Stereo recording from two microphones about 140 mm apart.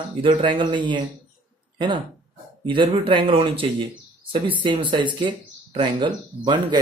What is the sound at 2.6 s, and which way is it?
Speech, 35° right (ahead or behind).